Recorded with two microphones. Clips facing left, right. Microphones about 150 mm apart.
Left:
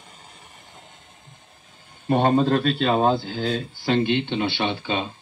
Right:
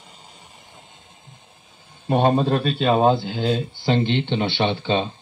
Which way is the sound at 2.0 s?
15° right (ahead or behind).